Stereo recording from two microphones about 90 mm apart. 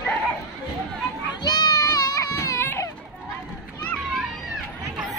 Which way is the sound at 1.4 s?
50° left (ahead or behind).